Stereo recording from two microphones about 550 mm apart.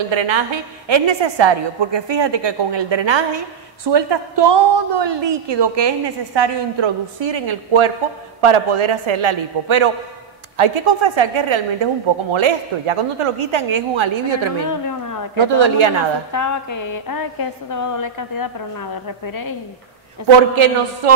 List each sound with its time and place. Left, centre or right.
0.1 s a woman's voice: right
14.6 s a sound: left
15.3 s a woman's voice: right
16.3 s a woman's voice: left
20.5 s a woman's voice: right